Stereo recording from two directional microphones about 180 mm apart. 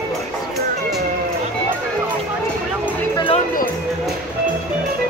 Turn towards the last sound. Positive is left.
turn(degrees=30)  # may be behind; listen again after turning